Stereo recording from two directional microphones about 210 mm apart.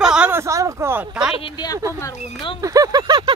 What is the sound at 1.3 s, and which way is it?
Speech, 25° left (ahead or behind).